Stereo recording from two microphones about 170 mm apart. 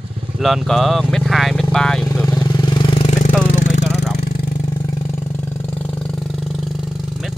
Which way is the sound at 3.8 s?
Centre (ahead or behind).